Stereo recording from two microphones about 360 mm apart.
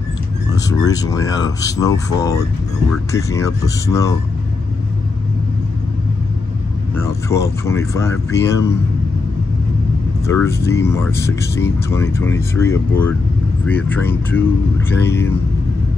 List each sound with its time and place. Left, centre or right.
0.7 s speech: centre
7.0 s speech: centre
10.2 s speech: centre